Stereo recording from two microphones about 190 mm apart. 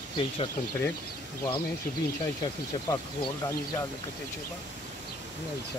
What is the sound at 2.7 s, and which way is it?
Speech, 25° left (ahead or behind).